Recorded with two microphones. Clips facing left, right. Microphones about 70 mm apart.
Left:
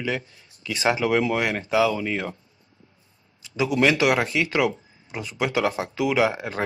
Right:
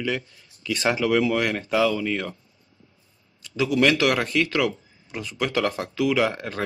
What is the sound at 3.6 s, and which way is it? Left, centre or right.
Speech, centre.